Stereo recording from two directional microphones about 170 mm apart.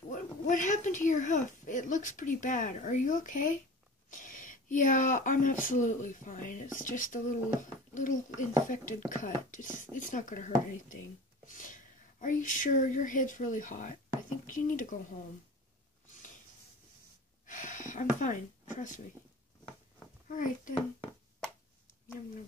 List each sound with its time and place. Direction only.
0.1 s speech: 50° left (ahead or behind)
17.5 s a sound: 50° left (ahead or behind)
20.2 s speech: 50° left (ahead or behind)